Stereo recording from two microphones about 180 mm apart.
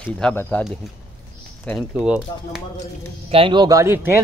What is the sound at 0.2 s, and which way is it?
Speech, 10° left (ahead or behind).